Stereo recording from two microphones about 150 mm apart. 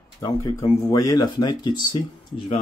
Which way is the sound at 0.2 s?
20° left (ahead or behind).